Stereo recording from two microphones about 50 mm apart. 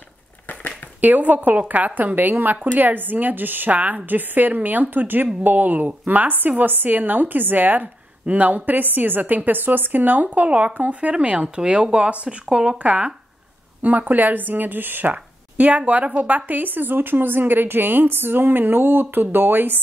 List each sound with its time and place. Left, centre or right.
1.0 s speech: right
13.8 s speech: right